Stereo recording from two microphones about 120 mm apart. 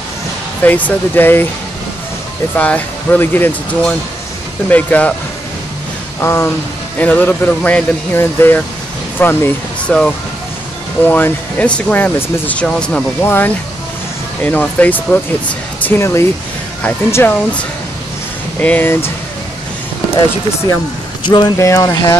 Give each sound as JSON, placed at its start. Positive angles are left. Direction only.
{"t": 0.7, "sound": "speech", "side_deg": 15}
{"t": 2.5, "sound": "speech", "side_deg": 10}
{"t": 6.2, "sound": "speech", "side_deg": 20}
{"t": 13.2, "sound": "speech", "side_deg": 20}
{"t": 21.2, "sound": "speech", "side_deg": 40}
{"t": 21.5, "sound": "speech", "side_deg": 25}